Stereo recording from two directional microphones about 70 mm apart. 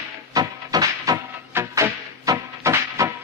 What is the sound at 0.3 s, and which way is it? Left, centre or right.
Music, right.